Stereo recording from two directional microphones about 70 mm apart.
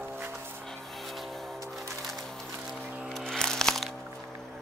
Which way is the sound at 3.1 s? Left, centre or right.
Centre.